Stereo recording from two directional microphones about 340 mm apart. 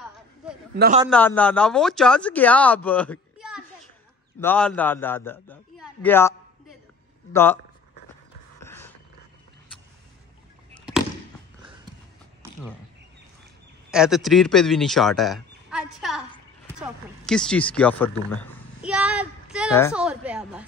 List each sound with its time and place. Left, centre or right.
0.4 s a sound: centre
0.7 s a man's voice: right
1.1 s speech: centre
8.5 s creak: centre
10.7 s fireworks: centre
13.8 s speech: centre
16.7 s a sound: centre
19.9 s speech: centre